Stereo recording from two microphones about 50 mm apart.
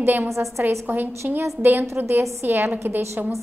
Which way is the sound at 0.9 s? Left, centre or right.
Right.